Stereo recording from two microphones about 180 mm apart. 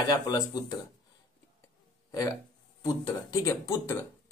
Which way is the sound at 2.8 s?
20° left (ahead or behind).